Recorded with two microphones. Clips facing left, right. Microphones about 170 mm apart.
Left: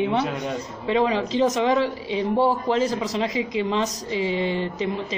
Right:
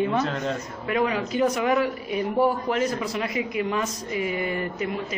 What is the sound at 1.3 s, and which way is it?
Speech, 90° left.